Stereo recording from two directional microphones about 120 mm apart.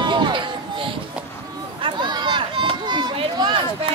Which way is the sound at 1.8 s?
40° right (ahead or behind).